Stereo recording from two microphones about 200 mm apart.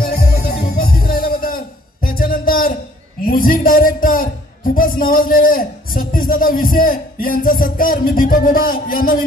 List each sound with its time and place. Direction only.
0.0 s music: 50° left (ahead or behind)
3.3 s a man's voice: 45° left (ahead or behind)